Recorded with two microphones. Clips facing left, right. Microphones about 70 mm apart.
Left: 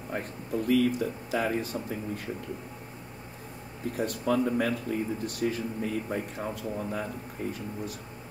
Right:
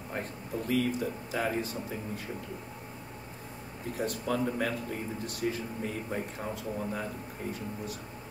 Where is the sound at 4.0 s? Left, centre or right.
Left.